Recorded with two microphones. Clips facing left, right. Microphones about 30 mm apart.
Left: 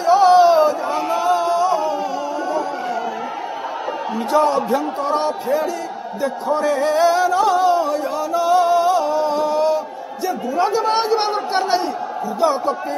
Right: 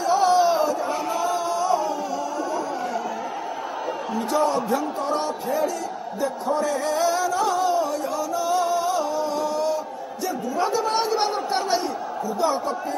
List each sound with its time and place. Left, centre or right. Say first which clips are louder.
0.0 s a sound: left 7 dB; left
4.5 s a man's voice: left 5 dB; left
6.4 s music: left 6 dB; left
10.2 s a man's voice: left 5 dB; left